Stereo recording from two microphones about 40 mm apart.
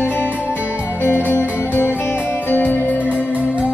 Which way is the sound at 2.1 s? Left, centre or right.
Left.